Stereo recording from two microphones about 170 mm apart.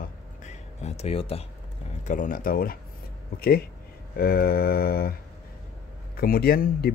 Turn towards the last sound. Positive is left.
turn(degrees=65)  # may be behind; listen again after turning